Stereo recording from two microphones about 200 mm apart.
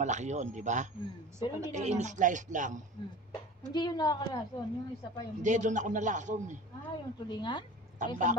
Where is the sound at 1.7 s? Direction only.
35° right (ahead or behind).